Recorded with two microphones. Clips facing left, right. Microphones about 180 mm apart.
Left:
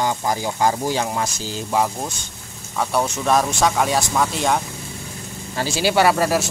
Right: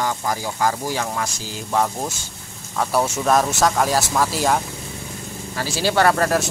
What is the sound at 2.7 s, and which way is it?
Speech, 5° right (ahead or behind).